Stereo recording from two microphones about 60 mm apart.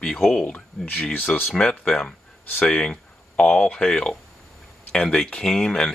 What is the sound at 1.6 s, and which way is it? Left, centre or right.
Speech, centre.